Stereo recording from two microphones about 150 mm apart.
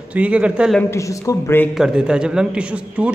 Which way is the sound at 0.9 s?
20° left (ahead or behind).